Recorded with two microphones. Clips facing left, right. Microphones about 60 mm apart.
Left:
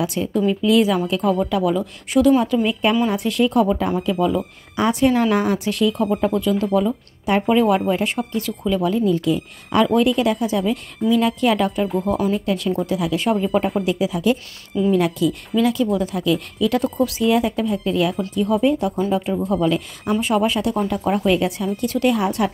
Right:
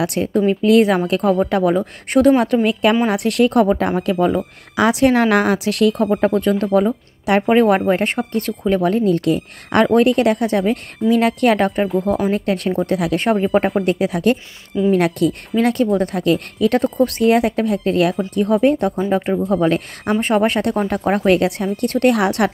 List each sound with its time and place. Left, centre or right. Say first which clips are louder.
0.0 s speech: right 3 dB; right
4.7 s speech: right 3 dB; right
11.9 s speech: right 3 dB; centre
12.3 s speech: right 2 dB; right